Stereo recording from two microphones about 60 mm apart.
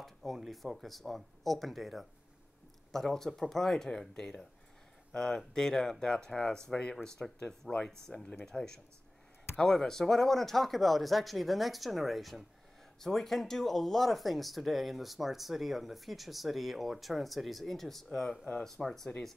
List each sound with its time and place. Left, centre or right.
0.0 s speech: centre
18.4 s speech: centre
18.7 s speech: centre